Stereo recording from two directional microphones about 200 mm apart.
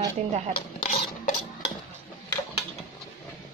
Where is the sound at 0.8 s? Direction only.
30° left (ahead or behind).